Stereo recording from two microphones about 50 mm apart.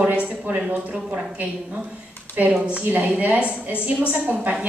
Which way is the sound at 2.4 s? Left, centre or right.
Right.